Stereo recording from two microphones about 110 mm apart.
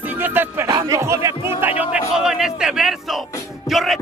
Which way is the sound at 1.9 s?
5° right (ahead or behind).